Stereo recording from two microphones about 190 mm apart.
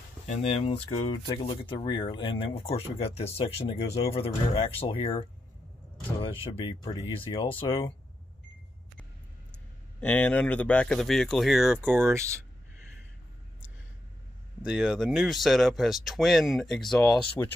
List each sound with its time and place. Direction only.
0.3 s speech: 30° left (ahead or behind)
6.2 s speech: 30° left (ahead or behind)
9.5 s speech: 5° left (ahead or behind); by 12.3 s 15° right (ahead or behind)
14.6 s speech: 5° right (ahead or behind)